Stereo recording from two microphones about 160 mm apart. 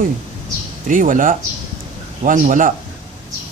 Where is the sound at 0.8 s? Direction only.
55° right (ahead or behind).